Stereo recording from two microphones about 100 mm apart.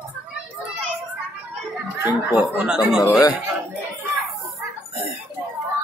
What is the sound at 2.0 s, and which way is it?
Speech, 25° right (ahead or behind).